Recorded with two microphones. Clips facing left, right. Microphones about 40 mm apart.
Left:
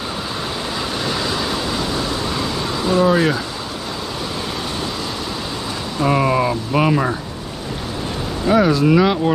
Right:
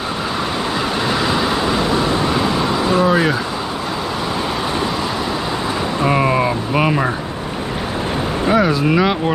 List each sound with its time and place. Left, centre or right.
1.0 s vehicle: centre
5.9 s a sound: centre
8.5 s speech: centre